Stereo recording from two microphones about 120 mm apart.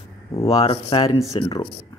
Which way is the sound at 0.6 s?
50° left (ahead or behind).